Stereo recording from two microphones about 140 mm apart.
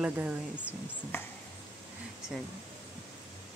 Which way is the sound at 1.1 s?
15° left (ahead or behind).